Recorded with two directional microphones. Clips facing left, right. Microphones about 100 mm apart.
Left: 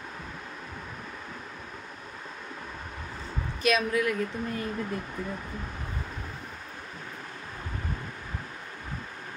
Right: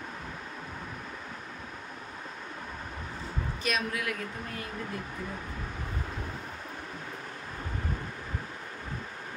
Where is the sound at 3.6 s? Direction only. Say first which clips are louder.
Left 7 dB; 75° left (ahead or behind).